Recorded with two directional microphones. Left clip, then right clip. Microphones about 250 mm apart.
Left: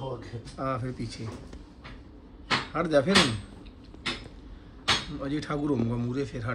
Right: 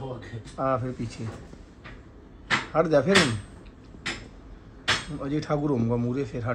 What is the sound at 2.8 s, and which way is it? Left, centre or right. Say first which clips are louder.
Speech: right 4 dB; centre.